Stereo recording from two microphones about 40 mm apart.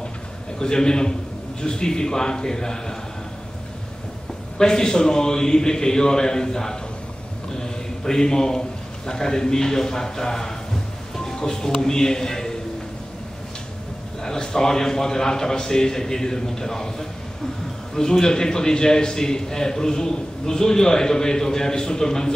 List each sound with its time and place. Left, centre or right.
0.6 s a man's voice: centre
4.6 s a man's voice: centre
11.1 s music: centre
11.8 s a man's voice: centre
14.2 s a man's voice: centre
17.9 s a man's voice: centre